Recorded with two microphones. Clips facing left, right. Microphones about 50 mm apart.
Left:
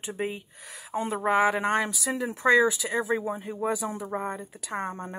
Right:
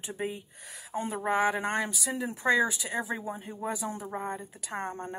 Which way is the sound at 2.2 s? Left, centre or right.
Left.